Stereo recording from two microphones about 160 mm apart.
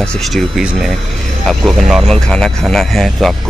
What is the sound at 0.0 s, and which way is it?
Speech, 5° left (ahead or behind).